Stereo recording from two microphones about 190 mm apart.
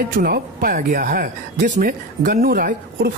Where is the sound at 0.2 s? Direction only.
50° right (ahead or behind).